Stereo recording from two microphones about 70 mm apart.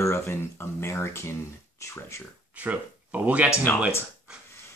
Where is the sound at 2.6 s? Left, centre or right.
Right.